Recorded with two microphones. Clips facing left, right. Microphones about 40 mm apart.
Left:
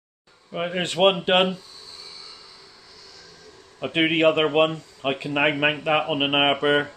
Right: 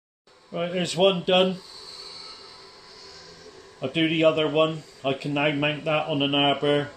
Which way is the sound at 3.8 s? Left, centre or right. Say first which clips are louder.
Left 2 dB; left.